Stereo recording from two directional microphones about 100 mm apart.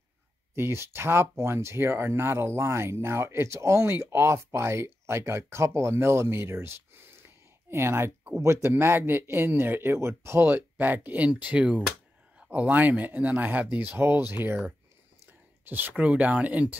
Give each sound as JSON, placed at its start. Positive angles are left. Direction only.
{"t": 0.6, "sound": "speech", "side_deg": -25}
{"t": 15.6, "sound": "speech", "side_deg": -20}